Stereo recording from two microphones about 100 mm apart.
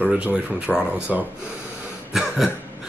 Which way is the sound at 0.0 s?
15° right (ahead or behind).